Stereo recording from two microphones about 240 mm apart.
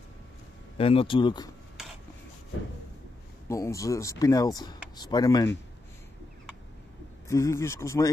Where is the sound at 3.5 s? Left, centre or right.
Centre.